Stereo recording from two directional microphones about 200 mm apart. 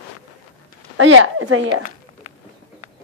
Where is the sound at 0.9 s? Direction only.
75° right (ahead or behind).